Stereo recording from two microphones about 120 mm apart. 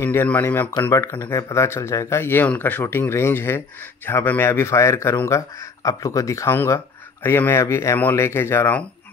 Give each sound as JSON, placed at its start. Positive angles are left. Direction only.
{"t": 0.0, "sound": "speech", "side_deg": 15}